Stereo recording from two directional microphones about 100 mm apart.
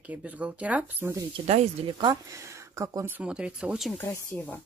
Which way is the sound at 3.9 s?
20° left (ahead or behind).